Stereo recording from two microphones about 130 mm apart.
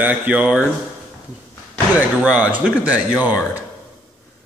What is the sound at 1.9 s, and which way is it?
Speech, 10° right (ahead or behind).